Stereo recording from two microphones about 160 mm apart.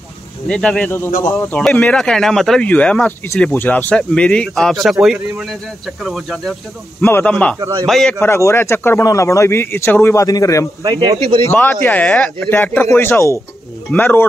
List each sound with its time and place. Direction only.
0.5 s speech: 5° left (ahead or behind)
1.2 s speech: 15° left (ahead or behind); by 6.5 s centre (ahead or behind)
7.0 s speech: 15° left (ahead or behind)
8.2 s speech: 15° left (ahead or behind)
10.9 s speech: 25° right (ahead or behind)
11.4 s speech: 10° left (ahead or behind)